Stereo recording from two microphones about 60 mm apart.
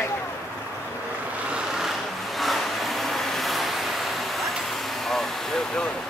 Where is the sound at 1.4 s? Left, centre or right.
Centre.